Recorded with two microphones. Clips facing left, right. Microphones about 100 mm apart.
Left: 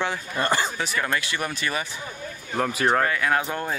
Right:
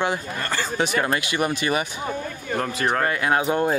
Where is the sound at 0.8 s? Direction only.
20° right (ahead or behind).